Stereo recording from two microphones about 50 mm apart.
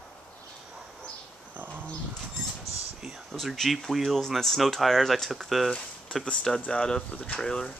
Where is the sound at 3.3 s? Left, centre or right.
Centre.